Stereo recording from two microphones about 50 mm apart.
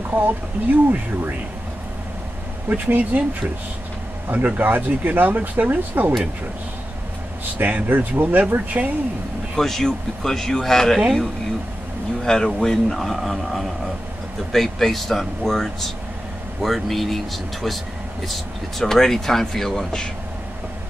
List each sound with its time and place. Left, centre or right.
0.1 s speech: right
2.7 s speech: right
4.3 s speech: right
7.5 s speech: right
9.6 s speech: centre
12.3 s speech: centre